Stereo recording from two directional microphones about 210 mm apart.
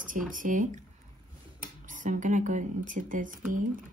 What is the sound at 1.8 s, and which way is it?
Speech, 40° right (ahead or behind).